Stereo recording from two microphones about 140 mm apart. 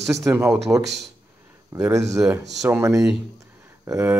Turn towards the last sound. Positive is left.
turn(degrees=-20)  # may be behind; listen again after turning